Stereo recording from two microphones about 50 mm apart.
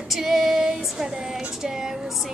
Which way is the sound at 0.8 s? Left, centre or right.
Centre.